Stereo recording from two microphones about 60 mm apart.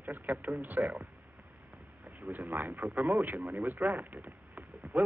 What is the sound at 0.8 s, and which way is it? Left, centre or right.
Speech, right.